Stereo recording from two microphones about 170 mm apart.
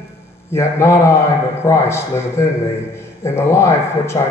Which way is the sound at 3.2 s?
15° left (ahead or behind).